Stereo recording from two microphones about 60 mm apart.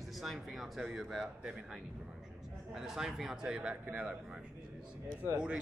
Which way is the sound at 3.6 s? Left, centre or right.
Right.